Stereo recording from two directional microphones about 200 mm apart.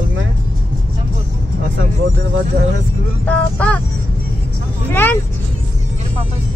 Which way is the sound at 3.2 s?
5° left (ahead or behind).